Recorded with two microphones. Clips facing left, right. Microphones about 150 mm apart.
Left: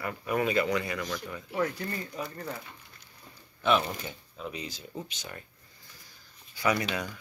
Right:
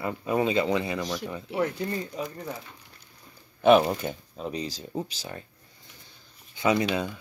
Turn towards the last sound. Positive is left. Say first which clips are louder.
# right 4 dB
turn(degrees=-20)  # may be behind; listen again after turning